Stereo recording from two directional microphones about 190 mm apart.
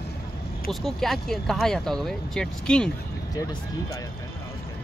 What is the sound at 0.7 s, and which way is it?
Speech, centre (ahead or behind).